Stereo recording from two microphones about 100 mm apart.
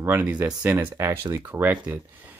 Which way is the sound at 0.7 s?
25° right (ahead or behind).